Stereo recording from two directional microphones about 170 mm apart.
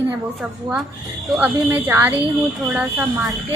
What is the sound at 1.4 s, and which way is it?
Speech, 10° right (ahead or behind).